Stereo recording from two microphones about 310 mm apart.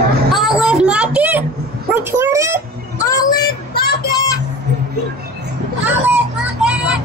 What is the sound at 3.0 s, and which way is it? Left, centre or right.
Child singing, centre.